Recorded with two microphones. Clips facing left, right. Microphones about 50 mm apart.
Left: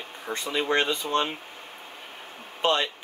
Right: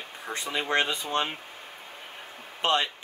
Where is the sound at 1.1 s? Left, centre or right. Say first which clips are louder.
Left 3 dB; centre.